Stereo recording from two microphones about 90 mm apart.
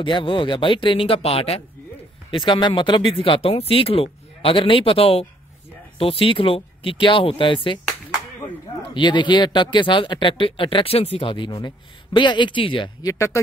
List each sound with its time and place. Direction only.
0.0 s speech: 65° left (ahead or behind); by 1.6 s 90° left
2.3 s speech: 65° left (ahead or behind)
8.9 s speech: 60° left (ahead or behind)
13.0 s speech: 35° left (ahead or behind)